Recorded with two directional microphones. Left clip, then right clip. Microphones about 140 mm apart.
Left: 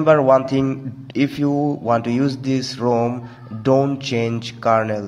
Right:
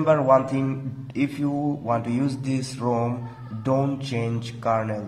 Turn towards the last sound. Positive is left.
turn(degrees=35)  # may be behind; listen again after turning